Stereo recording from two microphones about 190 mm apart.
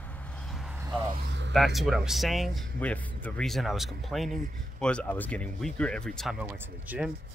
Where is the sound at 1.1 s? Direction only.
65° right (ahead or behind).